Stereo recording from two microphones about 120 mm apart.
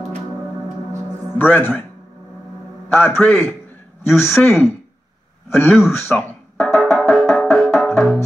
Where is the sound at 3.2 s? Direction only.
10° left (ahead or behind).